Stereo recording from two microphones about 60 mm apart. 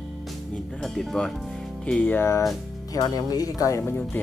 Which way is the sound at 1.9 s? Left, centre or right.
Centre.